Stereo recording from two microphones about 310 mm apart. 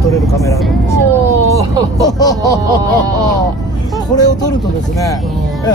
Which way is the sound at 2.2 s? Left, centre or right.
Centre.